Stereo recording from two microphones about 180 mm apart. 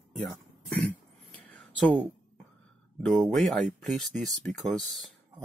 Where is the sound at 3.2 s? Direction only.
Centre (ahead or behind).